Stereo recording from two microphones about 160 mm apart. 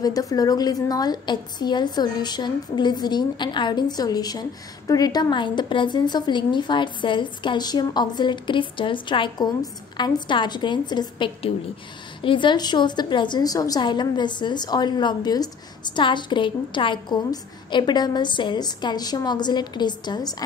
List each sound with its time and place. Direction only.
0.0 s a woman's voice: 20° left (ahead or behind)